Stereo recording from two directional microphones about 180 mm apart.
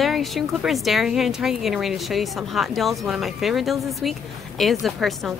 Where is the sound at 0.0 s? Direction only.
Centre (ahead or behind).